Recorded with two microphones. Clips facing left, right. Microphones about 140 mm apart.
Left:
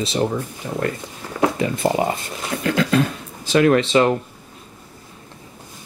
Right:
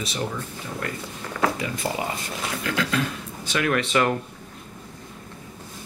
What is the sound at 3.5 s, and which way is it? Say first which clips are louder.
Speech: left 8 dB; 30° left (ahead or behind).